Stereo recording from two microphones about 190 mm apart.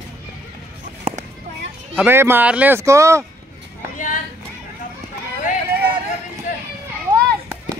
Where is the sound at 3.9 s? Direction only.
45° left (ahead or behind).